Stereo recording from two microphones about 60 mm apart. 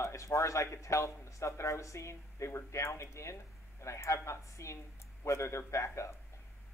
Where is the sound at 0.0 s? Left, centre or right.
Left.